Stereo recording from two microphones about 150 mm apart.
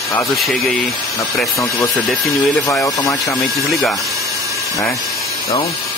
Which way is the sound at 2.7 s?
20° left (ahead or behind).